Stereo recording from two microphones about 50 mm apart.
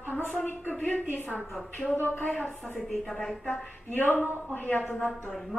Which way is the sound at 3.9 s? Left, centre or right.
Left.